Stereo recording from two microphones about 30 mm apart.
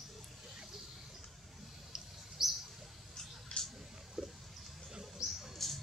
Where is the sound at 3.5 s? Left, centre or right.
Left.